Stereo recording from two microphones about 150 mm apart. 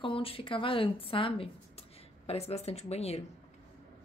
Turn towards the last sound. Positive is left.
turn(degrees=45)  # may be behind; listen again after turning